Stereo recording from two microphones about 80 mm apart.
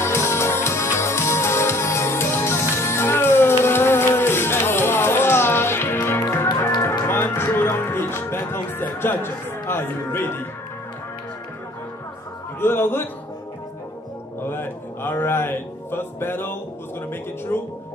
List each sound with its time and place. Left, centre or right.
0.0 s music: left
12.5 s speech: left
14.4 s speech: left